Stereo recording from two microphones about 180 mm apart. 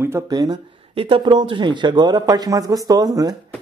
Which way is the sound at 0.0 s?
20° right (ahead or behind).